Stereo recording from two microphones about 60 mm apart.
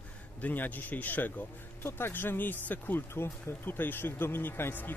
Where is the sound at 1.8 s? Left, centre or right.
Left.